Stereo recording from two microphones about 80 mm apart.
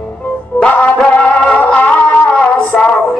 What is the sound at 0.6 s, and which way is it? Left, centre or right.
Music, centre.